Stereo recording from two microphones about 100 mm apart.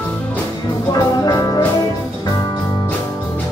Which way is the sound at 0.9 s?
40° left (ahead or behind).